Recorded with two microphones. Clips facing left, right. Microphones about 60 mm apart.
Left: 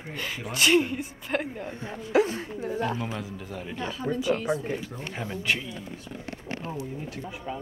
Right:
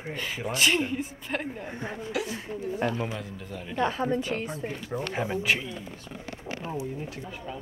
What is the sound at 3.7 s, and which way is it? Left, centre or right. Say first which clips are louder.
Speech: right 5 dB; right.